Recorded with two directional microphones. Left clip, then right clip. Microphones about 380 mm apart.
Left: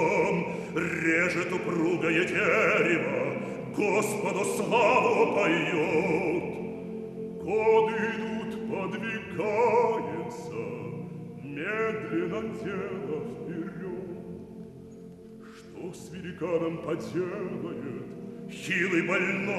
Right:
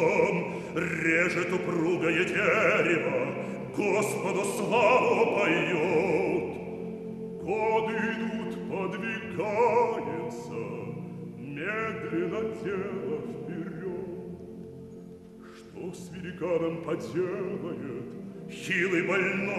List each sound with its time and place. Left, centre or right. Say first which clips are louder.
0.0 s chant: right 1 dB; centre
3.4 s opera: left 1 dB; centre
7.4 s music: left 4 dB; centre
16.3 s music: right 1 dB; centre